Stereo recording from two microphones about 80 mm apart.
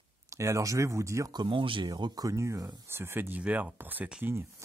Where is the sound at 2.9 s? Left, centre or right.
Right.